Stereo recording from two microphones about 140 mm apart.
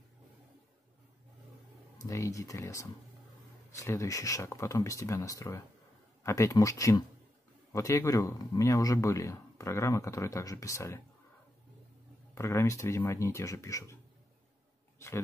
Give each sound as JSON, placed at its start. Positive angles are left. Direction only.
{"t": 2.0, "sound": "speech", "side_deg": 25}
{"t": 12.4, "sound": "speech", "side_deg": 20}